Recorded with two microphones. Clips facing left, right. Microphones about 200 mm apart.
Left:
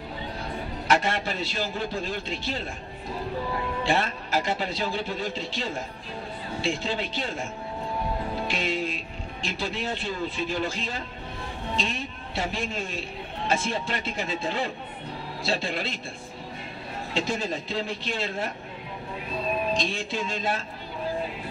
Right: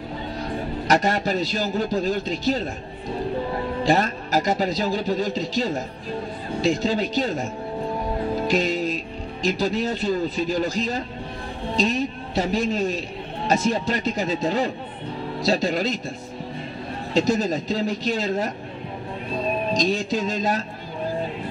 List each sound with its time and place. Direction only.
0.8 s a man's voice: 40° right (ahead or behind)
3.8 s a man's voice: 40° right (ahead or behind)
17.1 s a man's voice: 40° right (ahead or behind)
19.7 s a man's voice: 40° right (ahead or behind)